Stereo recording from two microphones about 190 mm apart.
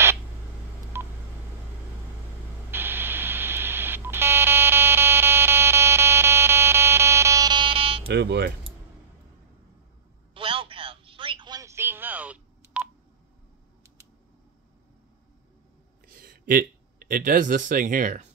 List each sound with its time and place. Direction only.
0.9 s telephone dialing: 10° right (ahead or behind)
2.7 s telephone dialing: 10° right (ahead or behind); by 8.0 s 30° right (ahead or behind)
8.1 s speech: 60° right (ahead or behind)
10.3 s telephone: 25° right (ahead or behind); by 12.8 s 10° right (ahead or behind)
16.2 s speech: 50° right (ahead or behind)